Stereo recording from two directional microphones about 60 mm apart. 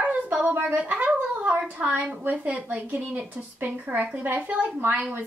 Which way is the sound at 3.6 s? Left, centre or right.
Right.